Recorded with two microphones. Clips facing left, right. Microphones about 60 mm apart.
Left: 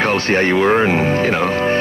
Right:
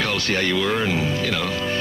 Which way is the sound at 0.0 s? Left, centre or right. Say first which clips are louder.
Left 7 dB; left.